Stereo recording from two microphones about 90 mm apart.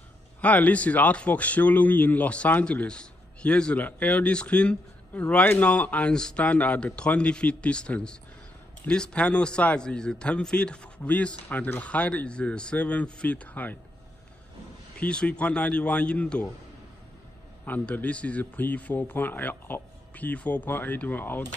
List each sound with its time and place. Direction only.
0.4 s a man's voice: 15° left (ahead or behind)
15.0 s a man's voice: 15° left (ahead or behind)
17.6 s a man's voice: 20° left (ahead or behind)